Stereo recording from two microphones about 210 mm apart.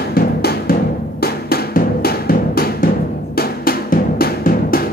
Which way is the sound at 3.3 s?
45° left (ahead or behind).